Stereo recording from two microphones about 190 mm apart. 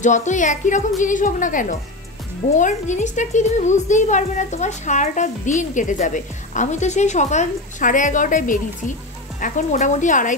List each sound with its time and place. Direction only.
0.0 s a woman's voice: 40° left (ahead or behind)